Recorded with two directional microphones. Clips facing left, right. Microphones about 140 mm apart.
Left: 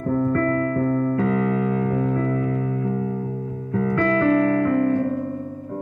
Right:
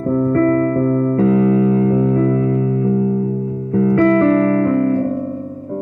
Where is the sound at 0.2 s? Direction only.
30° right (ahead or behind).